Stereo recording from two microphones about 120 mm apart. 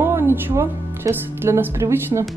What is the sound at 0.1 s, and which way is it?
Speech, 25° right (ahead or behind).